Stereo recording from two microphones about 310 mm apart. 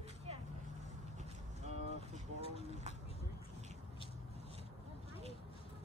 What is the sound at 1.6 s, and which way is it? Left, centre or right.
Vehicle, right.